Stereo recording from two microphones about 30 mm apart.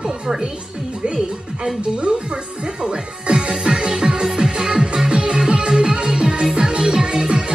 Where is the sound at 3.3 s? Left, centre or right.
Right.